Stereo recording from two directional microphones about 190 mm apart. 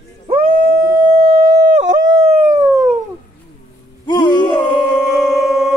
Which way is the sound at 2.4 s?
20° right (ahead or behind).